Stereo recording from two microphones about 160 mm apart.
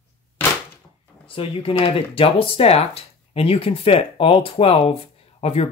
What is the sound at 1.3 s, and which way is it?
Speech, 35° left (ahead or behind).